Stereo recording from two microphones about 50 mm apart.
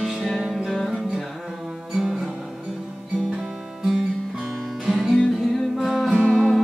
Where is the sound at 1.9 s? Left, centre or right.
Centre.